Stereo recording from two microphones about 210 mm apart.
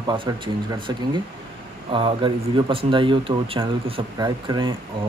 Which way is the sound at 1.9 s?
25° right (ahead or behind).